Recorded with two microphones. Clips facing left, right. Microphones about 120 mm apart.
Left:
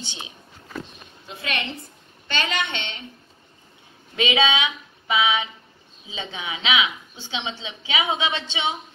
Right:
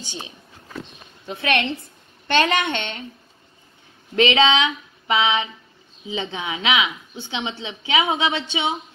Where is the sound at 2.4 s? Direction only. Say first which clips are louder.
Right 6 dB; 50° right (ahead or behind).